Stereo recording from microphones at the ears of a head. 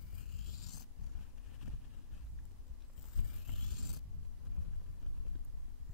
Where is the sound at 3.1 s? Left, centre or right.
Left.